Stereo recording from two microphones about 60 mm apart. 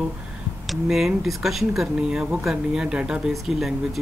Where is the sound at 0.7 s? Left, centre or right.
Centre.